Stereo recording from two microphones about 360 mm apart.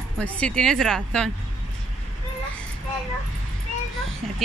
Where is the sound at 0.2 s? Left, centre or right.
Centre.